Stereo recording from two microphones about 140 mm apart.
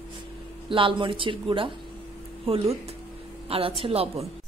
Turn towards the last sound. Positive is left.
turn(degrees=-45)  # may be behind; listen again after turning